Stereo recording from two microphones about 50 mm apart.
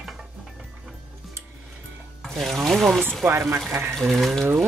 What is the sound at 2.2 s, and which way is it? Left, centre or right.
Speech, centre.